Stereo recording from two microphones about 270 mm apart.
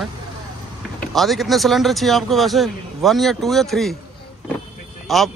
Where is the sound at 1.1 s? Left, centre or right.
Centre.